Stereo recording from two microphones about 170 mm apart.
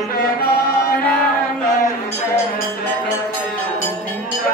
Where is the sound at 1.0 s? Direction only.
5° left (ahead or behind).